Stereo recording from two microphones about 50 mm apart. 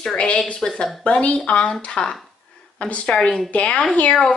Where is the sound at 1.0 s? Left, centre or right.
Left.